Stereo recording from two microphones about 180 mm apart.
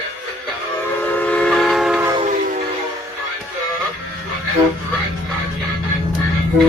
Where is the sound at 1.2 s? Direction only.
5° left (ahead or behind).